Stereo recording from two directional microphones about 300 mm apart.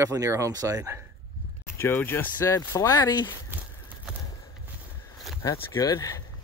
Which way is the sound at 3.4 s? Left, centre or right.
Centre.